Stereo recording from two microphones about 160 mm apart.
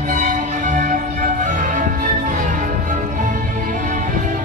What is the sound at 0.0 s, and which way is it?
Music, 55° right (ahead or behind).